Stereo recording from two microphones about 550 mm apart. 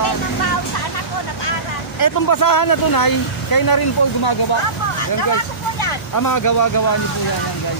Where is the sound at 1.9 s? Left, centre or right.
Left.